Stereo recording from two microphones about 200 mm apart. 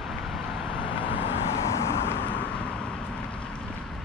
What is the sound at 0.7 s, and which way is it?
Vehicle, 25° left (ahead or behind).